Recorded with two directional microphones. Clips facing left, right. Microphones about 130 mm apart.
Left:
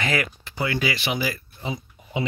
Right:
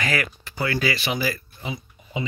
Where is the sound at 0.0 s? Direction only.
20° left (ahead or behind).